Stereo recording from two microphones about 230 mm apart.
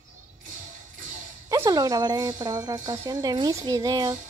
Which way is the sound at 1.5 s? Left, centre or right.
Centre.